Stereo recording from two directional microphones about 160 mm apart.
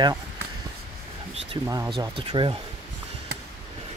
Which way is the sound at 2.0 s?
30° right (ahead or behind).